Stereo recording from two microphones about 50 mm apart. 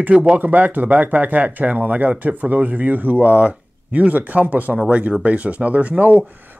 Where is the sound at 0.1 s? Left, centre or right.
Right.